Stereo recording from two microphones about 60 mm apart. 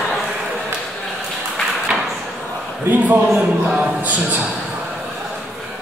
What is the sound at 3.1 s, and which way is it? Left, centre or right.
Speech, right.